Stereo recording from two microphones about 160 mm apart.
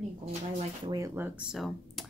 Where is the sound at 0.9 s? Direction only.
20° right (ahead or behind); by 2.1 s centre (ahead or behind).